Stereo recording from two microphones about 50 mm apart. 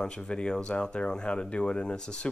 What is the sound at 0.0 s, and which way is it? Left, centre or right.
Speech, centre.